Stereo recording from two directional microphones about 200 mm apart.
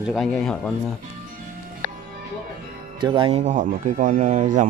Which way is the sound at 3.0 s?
25° right (ahead or behind).